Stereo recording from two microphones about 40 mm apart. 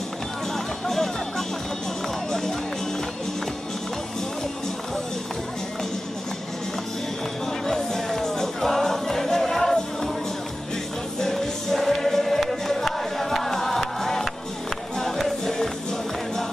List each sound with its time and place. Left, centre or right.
0.8 s music: centre
7.6 s music: centre
11.1 s music: centre